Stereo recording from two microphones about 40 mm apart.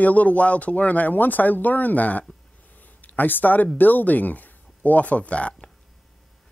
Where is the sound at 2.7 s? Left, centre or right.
Left.